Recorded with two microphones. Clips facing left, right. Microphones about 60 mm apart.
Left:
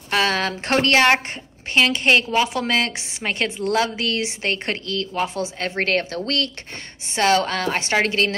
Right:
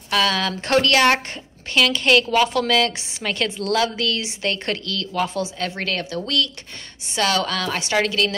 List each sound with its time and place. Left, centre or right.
0.1 s a woman's voice: left